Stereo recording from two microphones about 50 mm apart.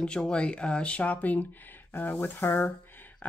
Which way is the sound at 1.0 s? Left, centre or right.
Left.